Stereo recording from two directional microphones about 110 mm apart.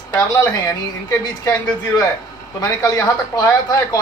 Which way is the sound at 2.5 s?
35° left (ahead or behind).